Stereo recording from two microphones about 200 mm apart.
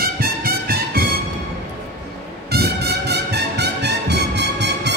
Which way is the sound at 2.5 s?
55° right (ahead or behind).